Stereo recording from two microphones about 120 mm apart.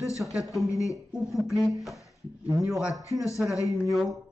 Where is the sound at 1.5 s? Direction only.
Centre (ahead or behind).